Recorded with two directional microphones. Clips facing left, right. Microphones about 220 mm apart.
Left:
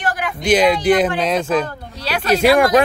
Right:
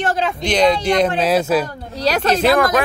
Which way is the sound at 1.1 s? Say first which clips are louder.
Right 2 dB; 5° right (ahead or behind).